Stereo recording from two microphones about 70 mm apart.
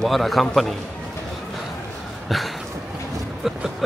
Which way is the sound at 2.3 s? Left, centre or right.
Centre.